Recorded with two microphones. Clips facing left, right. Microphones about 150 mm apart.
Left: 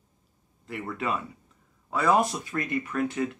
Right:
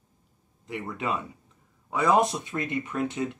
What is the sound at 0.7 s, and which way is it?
Speech, 20° right (ahead or behind).